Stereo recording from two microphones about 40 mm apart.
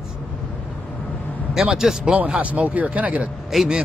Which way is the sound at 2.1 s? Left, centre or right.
Right.